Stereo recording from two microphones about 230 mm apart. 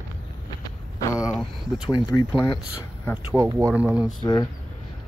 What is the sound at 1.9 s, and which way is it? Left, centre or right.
Speech, left.